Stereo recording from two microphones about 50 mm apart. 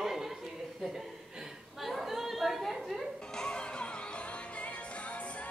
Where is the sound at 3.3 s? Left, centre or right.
Centre.